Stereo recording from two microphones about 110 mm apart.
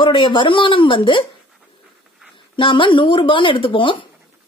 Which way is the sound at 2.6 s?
50° left (ahead or behind).